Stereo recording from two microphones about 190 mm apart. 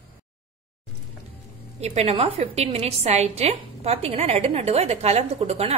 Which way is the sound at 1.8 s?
35° right (ahead or behind).